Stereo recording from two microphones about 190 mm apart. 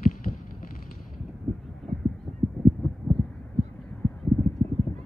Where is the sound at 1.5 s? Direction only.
Centre (ahead or behind).